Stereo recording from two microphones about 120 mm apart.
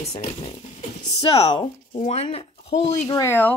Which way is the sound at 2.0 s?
70° left (ahead or behind).